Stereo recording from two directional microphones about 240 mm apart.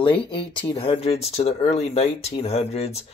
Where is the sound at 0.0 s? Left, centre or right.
Left.